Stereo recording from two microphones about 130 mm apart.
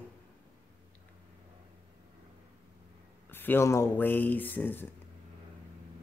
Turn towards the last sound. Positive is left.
turn(degrees=15)  # may be behind; listen again after turning